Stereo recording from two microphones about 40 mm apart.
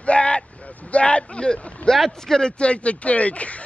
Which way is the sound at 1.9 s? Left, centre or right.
Centre.